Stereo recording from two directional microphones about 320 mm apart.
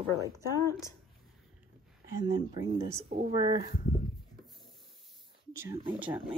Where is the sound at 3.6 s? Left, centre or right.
Left.